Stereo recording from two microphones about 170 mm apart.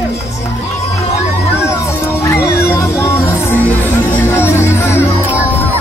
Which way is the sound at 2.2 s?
15° left (ahead or behind).